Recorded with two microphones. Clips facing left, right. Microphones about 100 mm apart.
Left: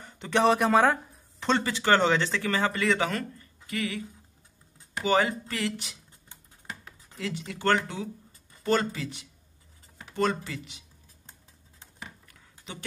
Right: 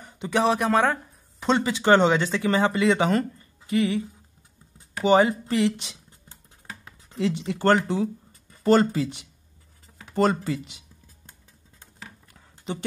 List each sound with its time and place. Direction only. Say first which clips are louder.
0.2 s speech: even; centre (ahead or behind)
1.4 s speech: right 4 dB; 15° right (ahead or behind)
5.0 s speech: right 6 dB; 25° right (ahead or behind)
7.1 s speech: right 9 dB; 25° right (ahead or behind)
7.9 s a sound: right 10 dB; 40° right (ahead or behind)
10.1 s speech: right 5 dB; 35° right (ahead or behind)